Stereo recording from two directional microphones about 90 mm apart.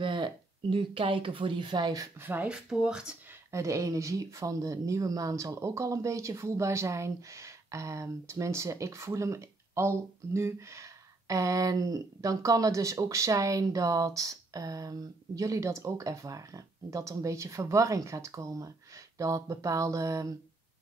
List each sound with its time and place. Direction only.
0.0 s speech: 65° right (ahead or behind)
2.1 s speech: 20° right (ahead or behind)
3.5 s speech: 35° right (ahead or behind)